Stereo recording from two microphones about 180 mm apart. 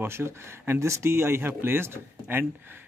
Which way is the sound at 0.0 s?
15° right (ahead or behind).